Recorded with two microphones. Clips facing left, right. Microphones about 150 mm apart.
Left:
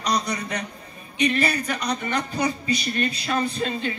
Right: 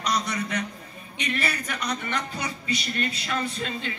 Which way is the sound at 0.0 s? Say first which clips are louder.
Left 2 dB; 35° left (ahead or behind).